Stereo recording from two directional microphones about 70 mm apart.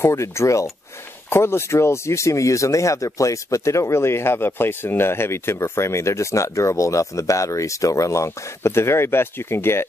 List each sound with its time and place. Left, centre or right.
0.0 s speech: left